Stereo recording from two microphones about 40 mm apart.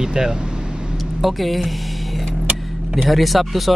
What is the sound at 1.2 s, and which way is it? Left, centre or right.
Speech, centre.